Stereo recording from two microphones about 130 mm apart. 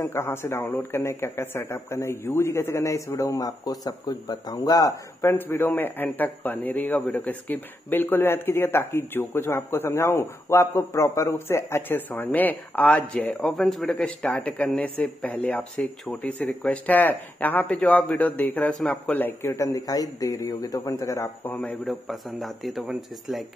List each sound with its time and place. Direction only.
0.0 s speech: 20° left (ahead or behind)
21.5 s speech: 10° left (ahead or behind)
21.8 s speech: centre (ahead or behind)